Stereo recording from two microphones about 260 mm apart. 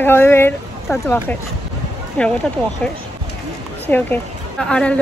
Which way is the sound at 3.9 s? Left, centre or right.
Centre.